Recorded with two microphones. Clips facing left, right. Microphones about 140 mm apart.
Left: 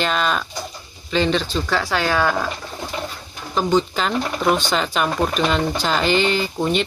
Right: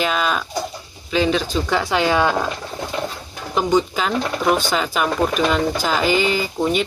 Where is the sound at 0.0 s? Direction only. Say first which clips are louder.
Even; 5° right (ahead or behind).